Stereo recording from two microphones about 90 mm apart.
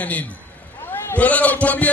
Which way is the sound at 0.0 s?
15° left (ahead or behind).